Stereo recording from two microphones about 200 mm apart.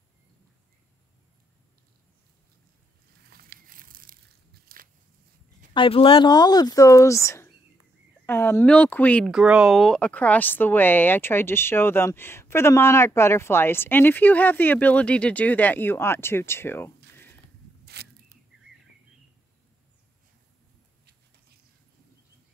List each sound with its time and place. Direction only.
3.3 s crumpling: 50° right (ahead or behind)
4.7 s biting: 45° right (ahead or behind)
5.7 s speech: 25° left (ahead or behind); by 17.3 s 10° left (ahead or behind)
17.8 s a sound: 55° right (ahead or behind)